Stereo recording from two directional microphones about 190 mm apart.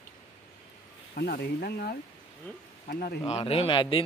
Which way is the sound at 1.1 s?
55° left (ahead or behind).